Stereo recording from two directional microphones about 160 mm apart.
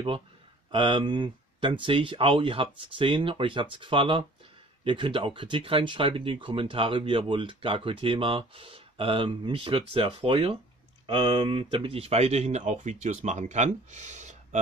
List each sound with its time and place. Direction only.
0.7 s speech: 30° right (ahead or behind); by 14.6 s 45° right (ahead or behind)